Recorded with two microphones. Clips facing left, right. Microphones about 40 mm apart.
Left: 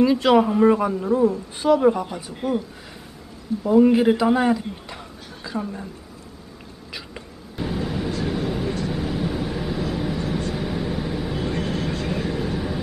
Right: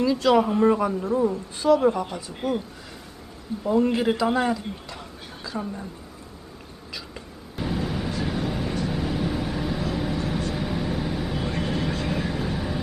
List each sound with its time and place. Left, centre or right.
0.0 s a man's voice: left
0.6 s speech: centre
3.6 s a woman's voice: centre
7.5 s vehicle: centre